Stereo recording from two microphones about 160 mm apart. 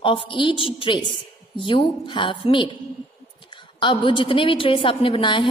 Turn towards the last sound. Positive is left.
turn(degrees=30)  # may be behind; listen again after turning